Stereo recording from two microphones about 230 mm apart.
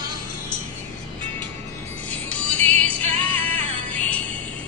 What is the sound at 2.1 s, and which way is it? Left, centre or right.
Music, centre.